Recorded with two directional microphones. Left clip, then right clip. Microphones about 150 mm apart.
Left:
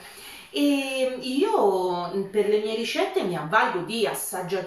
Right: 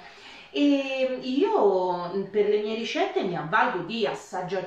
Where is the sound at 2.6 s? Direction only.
10° left (ahead or behind).